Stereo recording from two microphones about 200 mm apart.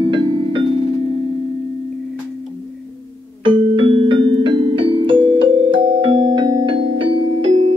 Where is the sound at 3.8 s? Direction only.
25° right (ahead or behind).